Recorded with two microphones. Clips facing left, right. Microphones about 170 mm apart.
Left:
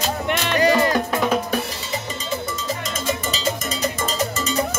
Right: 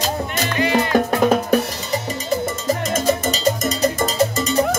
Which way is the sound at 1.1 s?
45° right (ahead or behind).